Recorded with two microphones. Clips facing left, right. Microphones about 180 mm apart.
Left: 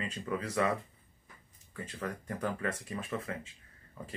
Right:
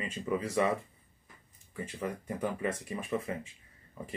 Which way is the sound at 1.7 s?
10° right (ahead or behind).